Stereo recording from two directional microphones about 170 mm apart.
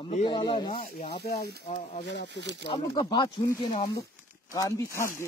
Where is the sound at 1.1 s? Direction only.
70° left (ahead or behind).